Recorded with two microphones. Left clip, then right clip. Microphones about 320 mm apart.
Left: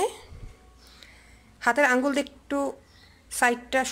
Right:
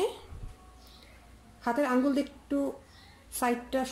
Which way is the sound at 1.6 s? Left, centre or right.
Left.